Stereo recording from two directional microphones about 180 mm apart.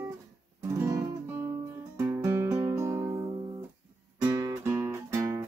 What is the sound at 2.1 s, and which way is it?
Music, 15° right (ahead or behind).